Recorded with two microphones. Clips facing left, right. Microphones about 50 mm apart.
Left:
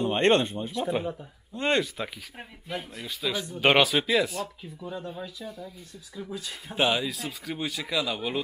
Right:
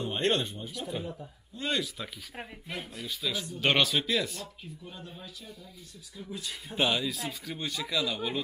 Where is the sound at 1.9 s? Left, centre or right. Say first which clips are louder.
Left 6 dB; centre.